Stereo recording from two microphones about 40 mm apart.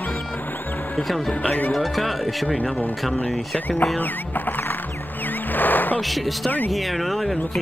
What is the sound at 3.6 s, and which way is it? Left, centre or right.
Speech, left.